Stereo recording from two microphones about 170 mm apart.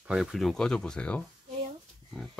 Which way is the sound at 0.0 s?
5° right (ahead or behind).